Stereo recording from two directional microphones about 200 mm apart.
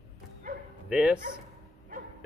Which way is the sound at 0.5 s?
40° right (ahead or behind).